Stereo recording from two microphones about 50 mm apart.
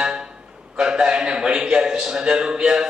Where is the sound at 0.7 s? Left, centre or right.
Centre.